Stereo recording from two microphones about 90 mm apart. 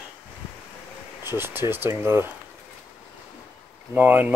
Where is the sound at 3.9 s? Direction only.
20° right (ahead or behind).